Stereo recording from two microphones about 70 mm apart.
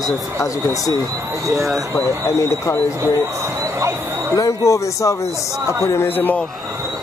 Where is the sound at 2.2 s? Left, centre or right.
Left.